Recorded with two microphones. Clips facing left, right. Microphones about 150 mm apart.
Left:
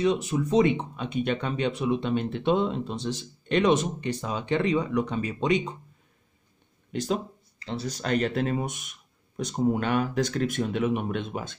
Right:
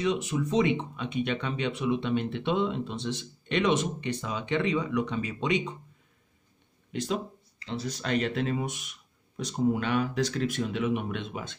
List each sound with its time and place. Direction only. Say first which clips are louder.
0.0 s speech: left 3 dB; 40° left (ahead or behind)
6.9 s speech: left 3 dB; 40° left (ahead or behind)